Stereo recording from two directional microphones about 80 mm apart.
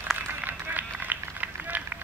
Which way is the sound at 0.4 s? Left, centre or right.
Right.